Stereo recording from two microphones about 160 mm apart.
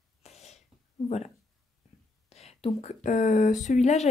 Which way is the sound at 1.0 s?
45° left (ahead or behind).